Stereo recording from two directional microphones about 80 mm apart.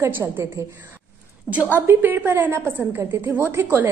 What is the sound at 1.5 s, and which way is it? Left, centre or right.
A woman's voice, right.